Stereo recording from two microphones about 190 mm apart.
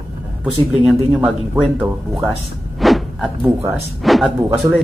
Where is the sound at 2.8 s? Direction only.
Centre (ahead or behind).